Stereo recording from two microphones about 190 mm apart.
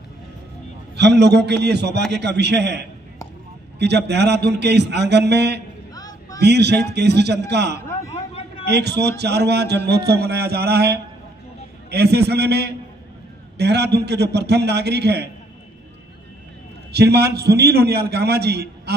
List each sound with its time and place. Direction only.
0.9 s a man's voice: 65° right (ahead or behind)
3.8 s a man's voice: 65° right (ahead or behind)
5.9 s a sound: 20° left (ahead or behind)
6.4 s a man's voice: 60° right (ahead or behind)
8.1 s a sound: 30° left (ahead or behind)
8.6 s a man's voice: 60° right (ahead or behind)
16.9 s a man's voice: 60° right (ahead or behind)